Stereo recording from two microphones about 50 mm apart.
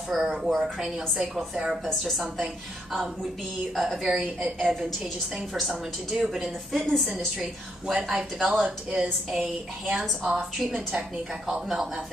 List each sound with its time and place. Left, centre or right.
0.1 s speech: centre
2.0 s a woman's voice: centre